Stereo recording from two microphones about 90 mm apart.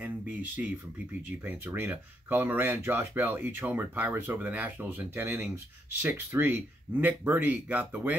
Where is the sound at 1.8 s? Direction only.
20° right (ahead or behind).